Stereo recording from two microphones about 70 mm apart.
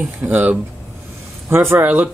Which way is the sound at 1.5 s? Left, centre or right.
Right.